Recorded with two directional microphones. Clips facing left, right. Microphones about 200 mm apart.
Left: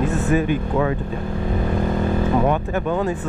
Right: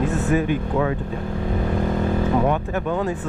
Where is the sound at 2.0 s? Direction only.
25° left (ahead or behind).